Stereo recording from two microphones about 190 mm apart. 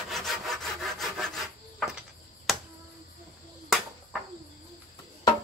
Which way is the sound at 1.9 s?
5° right (ahead or behind).